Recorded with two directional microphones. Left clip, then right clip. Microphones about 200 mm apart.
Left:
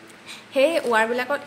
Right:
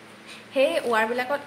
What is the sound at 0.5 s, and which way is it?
Speech, 25° left (ahead or behind).